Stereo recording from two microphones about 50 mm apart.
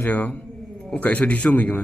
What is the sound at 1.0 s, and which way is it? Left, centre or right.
Mantra, left.